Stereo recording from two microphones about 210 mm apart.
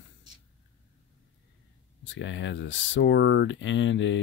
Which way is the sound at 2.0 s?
60° left (ahead or behind).